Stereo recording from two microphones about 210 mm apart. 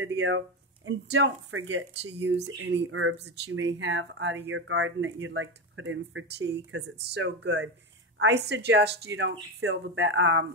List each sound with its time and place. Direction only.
0.0 s speech: 60° right (ahead or behind)